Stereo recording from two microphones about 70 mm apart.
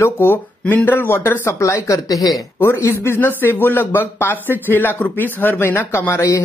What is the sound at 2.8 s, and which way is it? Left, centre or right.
Speech, left.